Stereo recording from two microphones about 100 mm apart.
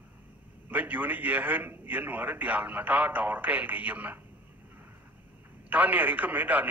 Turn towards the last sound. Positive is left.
turn(degrees=-15)  # may be behind; listen again after turning